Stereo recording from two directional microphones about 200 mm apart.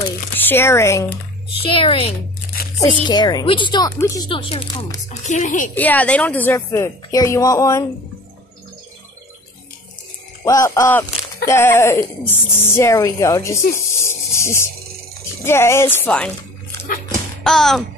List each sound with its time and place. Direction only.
0.4 s speech: 10° left (ahead or behind)
1.6 s a woman's voice: 25° left (ahead or behind)
5.2 s speech: 40° left (ahead or behind)
5.8 s speech: 10° left (ahead or behind)
10.4 s speech: 15° left (ahead or behind)
17.4 s speech: centre (ahead or behind)